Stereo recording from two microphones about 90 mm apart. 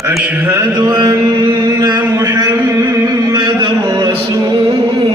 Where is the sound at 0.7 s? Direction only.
50° right (ahead or behind).